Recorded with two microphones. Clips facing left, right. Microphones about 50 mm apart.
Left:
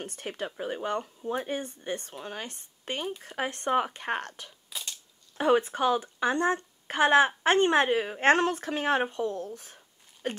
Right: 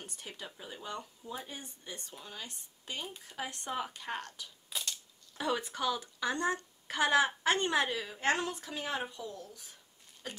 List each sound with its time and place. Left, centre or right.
0.0 s speech: left